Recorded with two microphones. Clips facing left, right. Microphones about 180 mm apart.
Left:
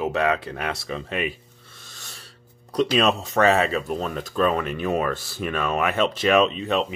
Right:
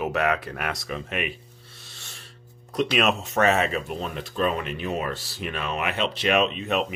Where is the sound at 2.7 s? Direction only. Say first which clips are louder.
Left 3 dB; 35° left (ahead or behind).